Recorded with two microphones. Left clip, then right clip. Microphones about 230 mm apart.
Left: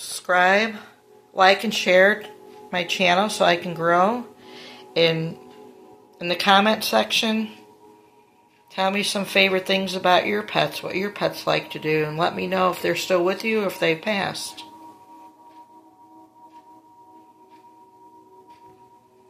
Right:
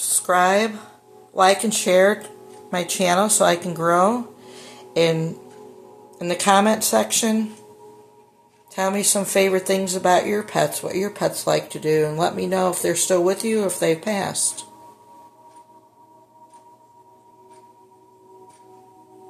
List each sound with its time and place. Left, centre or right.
0.0 s a sound: centre
1.3 s speech: centre
8.7 s speech: centre